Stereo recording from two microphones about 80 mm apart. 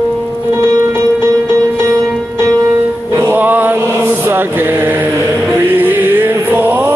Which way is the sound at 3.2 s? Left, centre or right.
Right.